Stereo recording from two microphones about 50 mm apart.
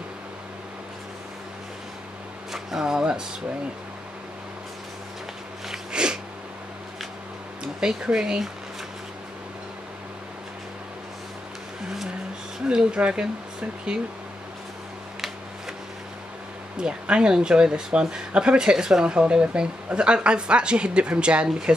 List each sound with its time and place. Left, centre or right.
2.5 s speech: centre
5.7 s a sound: centre
7.6 s speech: centre
12.6 s speech: right
16.7 s speech: right